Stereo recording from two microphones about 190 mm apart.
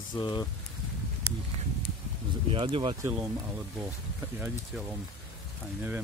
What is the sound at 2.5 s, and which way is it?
Speech, 30° right (ahead or behind).